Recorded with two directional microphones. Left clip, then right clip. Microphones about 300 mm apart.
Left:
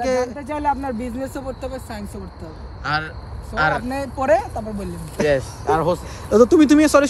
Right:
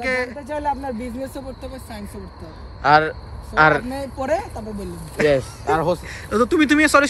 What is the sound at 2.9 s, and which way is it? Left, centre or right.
Speech, centre.